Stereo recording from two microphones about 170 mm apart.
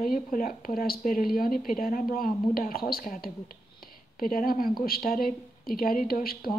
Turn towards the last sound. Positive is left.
turn(degrees=60)  # may be behind; listen again after turning